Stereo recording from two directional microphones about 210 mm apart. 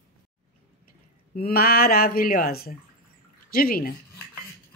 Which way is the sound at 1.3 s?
45° left (ahead or behind).